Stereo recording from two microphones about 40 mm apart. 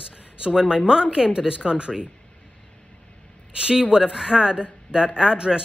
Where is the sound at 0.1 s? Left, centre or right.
Right.